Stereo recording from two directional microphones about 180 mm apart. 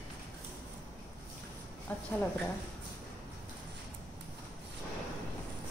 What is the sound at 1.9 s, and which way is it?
Speech, 10° left (ahead or behind).